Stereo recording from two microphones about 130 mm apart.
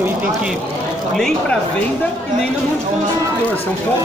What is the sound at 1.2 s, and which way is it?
Speech, 5° left (ahead or behind).